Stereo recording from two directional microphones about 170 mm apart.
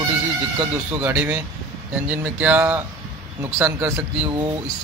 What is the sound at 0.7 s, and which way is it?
A man's voice, 15° right (ahead or behind).